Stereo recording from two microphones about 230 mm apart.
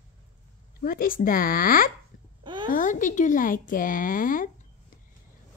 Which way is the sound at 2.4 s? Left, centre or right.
Centre.